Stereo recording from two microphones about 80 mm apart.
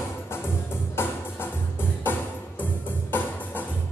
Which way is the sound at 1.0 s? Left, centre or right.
Left.